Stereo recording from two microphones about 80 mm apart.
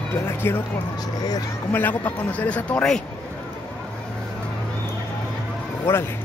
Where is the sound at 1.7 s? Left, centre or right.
Left.